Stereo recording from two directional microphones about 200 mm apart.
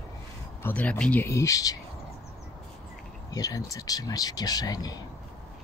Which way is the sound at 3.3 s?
15° left (ahead or behind).